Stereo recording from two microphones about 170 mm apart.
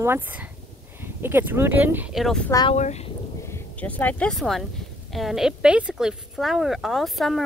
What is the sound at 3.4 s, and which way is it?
A woman's voice, 10° left (ahead or behind).